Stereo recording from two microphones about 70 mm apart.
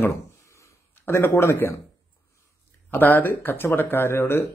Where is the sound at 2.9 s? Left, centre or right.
Left.